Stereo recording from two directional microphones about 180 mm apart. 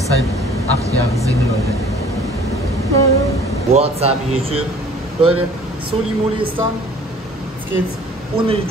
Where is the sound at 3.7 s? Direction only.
35° right (ahead or behind).